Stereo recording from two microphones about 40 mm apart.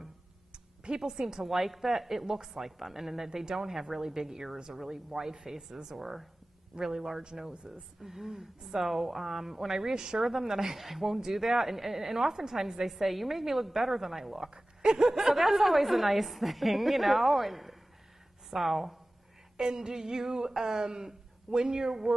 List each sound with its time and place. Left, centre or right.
0.0 s a sound: centre
1.5 s a woman's voice: centre
14.5 s a woman's voice: centre
19.5 s a woman's voice: centre